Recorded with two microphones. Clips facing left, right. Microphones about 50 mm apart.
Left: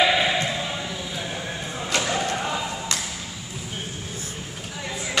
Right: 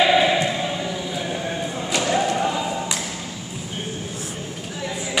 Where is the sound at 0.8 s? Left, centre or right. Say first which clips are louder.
Right 4 dB; centre.